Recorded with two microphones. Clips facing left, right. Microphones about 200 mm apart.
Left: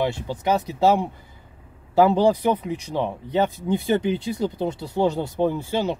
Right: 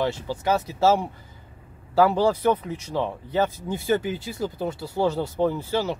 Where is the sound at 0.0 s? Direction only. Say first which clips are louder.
Left 1 dB; 15° left (ahead or behind).